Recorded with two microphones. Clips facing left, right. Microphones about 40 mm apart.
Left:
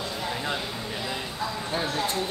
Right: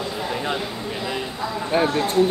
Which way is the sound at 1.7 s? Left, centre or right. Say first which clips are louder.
Right 10 dB; right.